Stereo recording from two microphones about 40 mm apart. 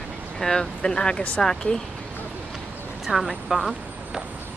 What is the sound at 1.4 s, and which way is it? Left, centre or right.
Speech, centre.